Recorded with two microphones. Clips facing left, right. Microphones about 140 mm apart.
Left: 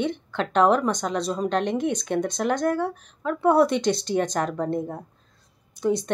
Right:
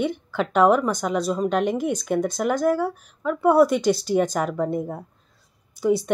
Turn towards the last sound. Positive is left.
turn(degrees=-5)  # may be behind; listen again after turning